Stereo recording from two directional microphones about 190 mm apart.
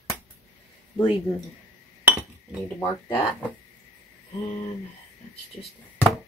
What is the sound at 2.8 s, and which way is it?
Speech, 10° left (ahead or behind).